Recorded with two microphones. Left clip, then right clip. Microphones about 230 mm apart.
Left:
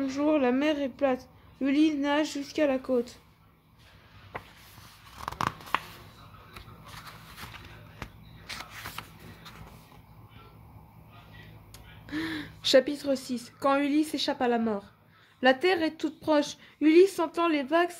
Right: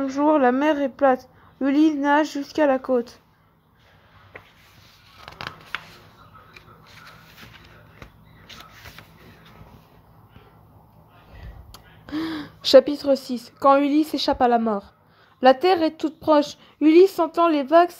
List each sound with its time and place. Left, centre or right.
0.1 s a woman's voice: centre
11.7 s a woman's voice: right